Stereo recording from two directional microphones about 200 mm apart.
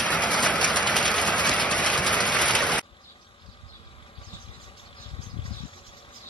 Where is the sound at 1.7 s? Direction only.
5° left (ahead or behind).